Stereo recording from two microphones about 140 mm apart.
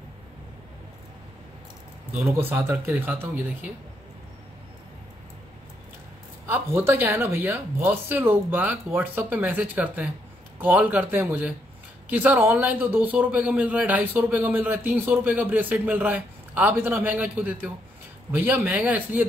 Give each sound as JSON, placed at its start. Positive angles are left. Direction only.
{"t": 2.1, "sound": "a man's voice", "side_deg": -15}
{"t": 6.4, "sound": "a man's voice", "side_deg": -15}